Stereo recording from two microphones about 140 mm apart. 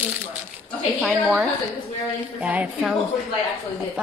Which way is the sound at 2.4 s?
10° right (ahead or behind).